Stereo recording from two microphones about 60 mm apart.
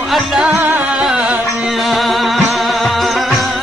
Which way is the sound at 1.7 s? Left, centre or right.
Centre.